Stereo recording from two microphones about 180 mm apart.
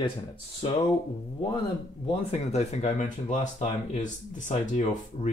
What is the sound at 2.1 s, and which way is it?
Speech, 35° left (ahead or behind).